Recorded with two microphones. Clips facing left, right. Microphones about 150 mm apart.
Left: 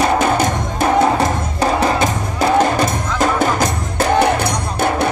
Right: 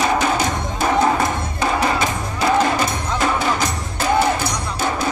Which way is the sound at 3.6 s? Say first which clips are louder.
Left 5 dB; 55° left (ahead or behind).